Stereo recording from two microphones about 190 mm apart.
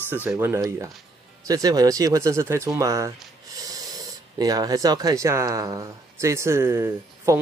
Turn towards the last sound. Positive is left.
turn(degrees=-15)  # may be behind; listen again after turning